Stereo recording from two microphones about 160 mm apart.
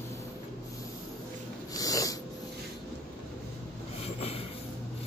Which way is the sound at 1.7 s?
20° left (ahead or behind).